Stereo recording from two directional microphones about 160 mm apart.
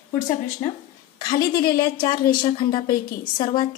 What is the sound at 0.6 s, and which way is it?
A woman's voice, 25° left (ahead or behind).